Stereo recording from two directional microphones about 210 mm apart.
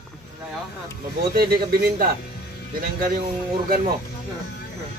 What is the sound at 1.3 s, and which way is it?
Speech, 45° right (ahead or behind).